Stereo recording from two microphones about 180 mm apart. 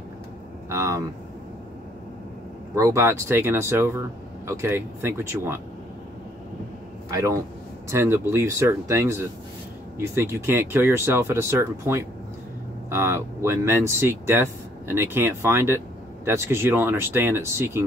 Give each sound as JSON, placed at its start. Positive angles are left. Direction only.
{"t": 0.7, "sound": "speech", "side_deg": -15}
{"t": 2.7, "sound": "speech", "side_deg": -15}
{"t": 7.1, "sound": "a man's voice", "side_deg": -20}